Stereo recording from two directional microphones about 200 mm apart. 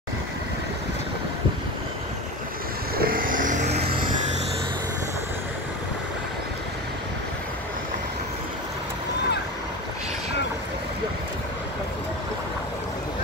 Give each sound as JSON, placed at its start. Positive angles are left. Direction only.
{"t": 3.0, "sound": "vehicle", "side_deg": -45}